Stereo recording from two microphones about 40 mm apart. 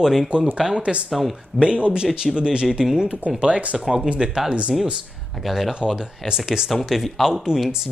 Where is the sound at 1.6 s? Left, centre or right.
Right.